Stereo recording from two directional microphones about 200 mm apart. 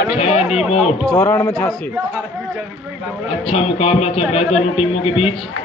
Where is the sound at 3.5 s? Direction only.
30° left (ahead or behind).